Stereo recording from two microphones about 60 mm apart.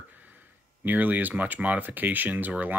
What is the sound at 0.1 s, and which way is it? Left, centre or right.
Speech, right.